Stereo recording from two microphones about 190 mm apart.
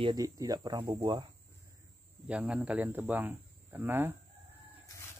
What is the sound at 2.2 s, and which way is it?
Speech, 5° right (ahead or behind).